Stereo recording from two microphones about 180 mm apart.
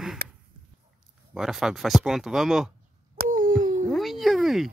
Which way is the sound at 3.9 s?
Centre (ahead or behind).